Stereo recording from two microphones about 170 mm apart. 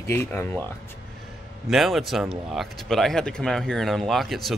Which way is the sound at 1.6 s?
Centre (ahead or behind).